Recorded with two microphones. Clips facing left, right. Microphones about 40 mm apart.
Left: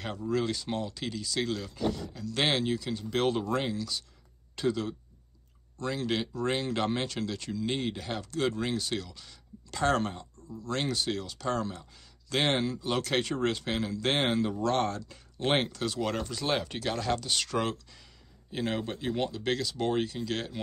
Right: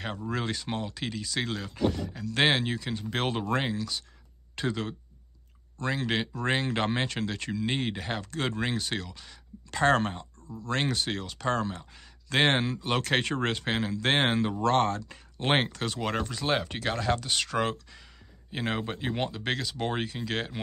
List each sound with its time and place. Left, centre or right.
0.0 s speech: right